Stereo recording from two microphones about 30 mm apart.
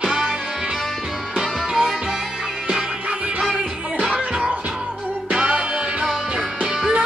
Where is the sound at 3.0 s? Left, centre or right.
Right.